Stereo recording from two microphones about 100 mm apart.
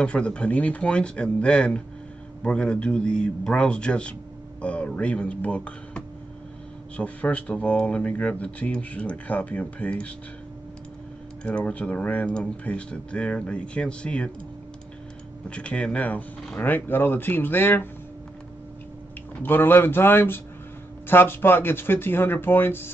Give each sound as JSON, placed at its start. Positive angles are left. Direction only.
{"t": 0.0, "sound": "speech", "side_deg": 10}
{"t": 11.4, "sound": "speech", "side_deg": 10}
{"t": 15.5, "sound": "speech", "side_deg": 10}
{"t": 19.4, "sound": "speech", "side_deg": 20}